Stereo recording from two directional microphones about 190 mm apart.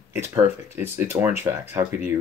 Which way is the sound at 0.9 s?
10° right (ahead or behind).